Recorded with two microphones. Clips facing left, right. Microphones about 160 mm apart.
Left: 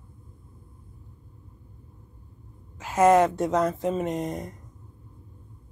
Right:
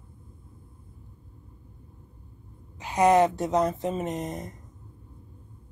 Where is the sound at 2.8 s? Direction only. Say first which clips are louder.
Left 1 dB; centre (ahead or behind).